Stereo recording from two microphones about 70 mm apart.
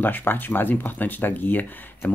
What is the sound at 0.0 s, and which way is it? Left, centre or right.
Speech, left.